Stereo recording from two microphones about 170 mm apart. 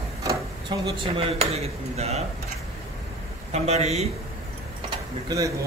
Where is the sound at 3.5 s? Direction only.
40° right (ahead or behind).